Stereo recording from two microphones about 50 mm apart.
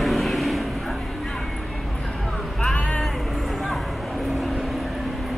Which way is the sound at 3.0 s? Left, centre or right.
Centre.